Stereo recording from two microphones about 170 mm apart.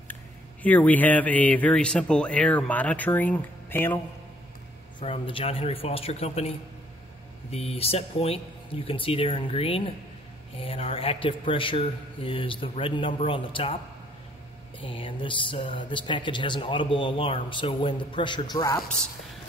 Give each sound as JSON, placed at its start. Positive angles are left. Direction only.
{"t": 0.1, "sound": "speech", "side_deg": 10}
{"t": 5.0, "sound": "a man's voice", "side_deg": 30}
{"t": 7.5, "sound": "a man's voice", "side_deg": 35}
{"t": 14.8, "sound": "speech", "side_deg": 30}